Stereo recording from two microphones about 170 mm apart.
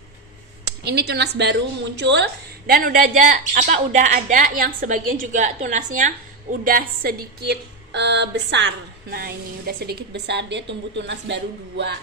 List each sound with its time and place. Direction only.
0.8 s a woman's voice: 75° right (ahead or behind); by 6.1 s 50° right (ahead or behind)
6.6 s a woman's voice: 60° right (ahead or behind); by 12.0 s 90° right